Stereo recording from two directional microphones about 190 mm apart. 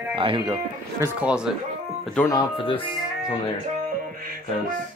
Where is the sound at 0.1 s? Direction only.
25° right (ahead or behind).